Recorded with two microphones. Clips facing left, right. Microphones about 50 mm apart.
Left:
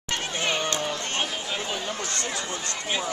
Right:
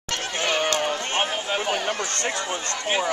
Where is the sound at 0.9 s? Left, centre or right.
Right.